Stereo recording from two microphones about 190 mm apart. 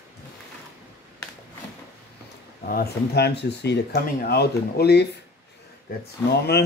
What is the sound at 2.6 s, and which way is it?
Speech, 50° left (ahead or behind).